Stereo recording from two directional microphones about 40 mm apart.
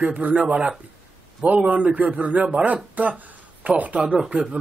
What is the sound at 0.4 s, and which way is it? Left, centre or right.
Speech, right.